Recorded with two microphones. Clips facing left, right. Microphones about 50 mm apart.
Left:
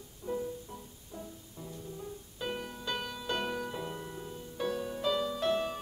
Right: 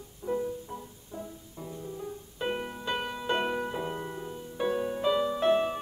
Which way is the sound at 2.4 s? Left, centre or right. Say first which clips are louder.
Right 5 dB; right.